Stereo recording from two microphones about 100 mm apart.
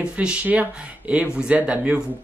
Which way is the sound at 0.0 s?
10° right (ahead or behind).